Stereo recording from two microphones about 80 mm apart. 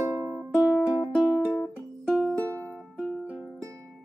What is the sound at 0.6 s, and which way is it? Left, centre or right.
Music, centre.